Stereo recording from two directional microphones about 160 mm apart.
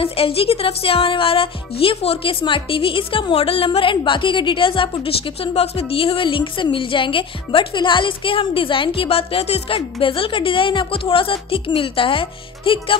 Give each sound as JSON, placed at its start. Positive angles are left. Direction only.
{"t": 0.0, "sound": "speech", "side_deg": 35}